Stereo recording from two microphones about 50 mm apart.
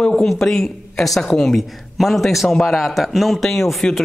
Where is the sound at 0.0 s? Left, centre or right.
Centre.